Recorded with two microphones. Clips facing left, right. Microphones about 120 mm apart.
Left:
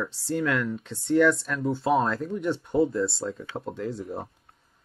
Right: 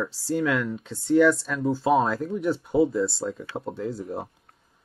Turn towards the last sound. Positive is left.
turn(degrees=0)  # may be behind; listen again after turning